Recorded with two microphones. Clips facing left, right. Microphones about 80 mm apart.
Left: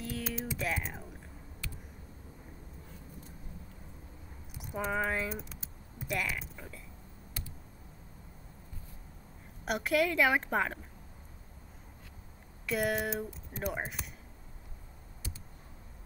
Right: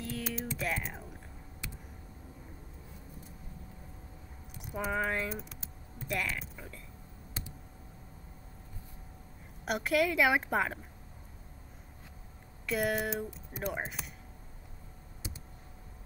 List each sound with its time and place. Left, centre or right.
0.0 s typing: centre
4.6 s speech: centre
9.7 s a woman's voice: centre
12.6 s a woman's voice: centre